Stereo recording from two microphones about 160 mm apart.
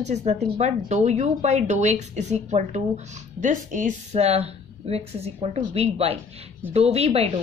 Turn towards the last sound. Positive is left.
turn(degrees=-40)  # may be behind; listen again after turning